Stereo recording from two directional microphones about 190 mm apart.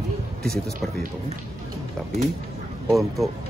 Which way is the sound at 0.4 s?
5° left (ahead or behind).